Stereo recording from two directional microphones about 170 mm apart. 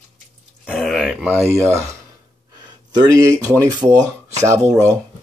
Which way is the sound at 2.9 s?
20° right (ahead or behind).